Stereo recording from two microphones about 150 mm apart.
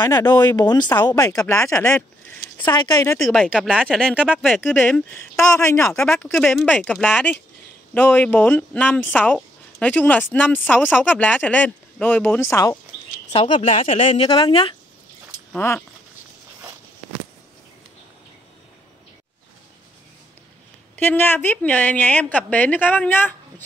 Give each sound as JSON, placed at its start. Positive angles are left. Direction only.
{"t": 0.0, "sound": "speech", "side_deg": 25}
{"t": 3.3, "sound": "speech", "side_deg": 0}
{"t": 4.8, "sound": "speech", "side_deg": 10}
{"t": 6.3, "sound": "speech", "side_deg": 0}
{"t": 13.3, "sound": "speech", "side_deg": 40}
{"t": 15.5, "sound": "speech", "side_deg": 15}
{"t": 20.9, "sound": "speech", "side_deg": 10}